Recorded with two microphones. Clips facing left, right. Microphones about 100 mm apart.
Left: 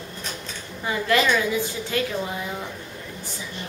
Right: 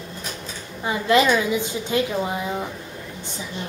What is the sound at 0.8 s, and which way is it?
A woman's voice, 20° right (ahead or behind).